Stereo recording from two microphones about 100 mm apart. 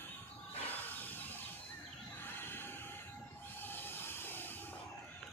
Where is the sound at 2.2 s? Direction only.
20° left (ahead or behind).